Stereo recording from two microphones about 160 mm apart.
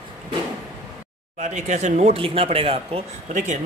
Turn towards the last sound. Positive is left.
turn(degrees=-50)  # may be behind; listen again after turning